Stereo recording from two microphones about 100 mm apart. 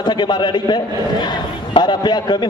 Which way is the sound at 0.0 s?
45° left (ahead or behind).